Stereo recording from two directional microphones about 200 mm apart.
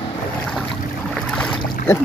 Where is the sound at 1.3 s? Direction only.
5° left (ahead or behind).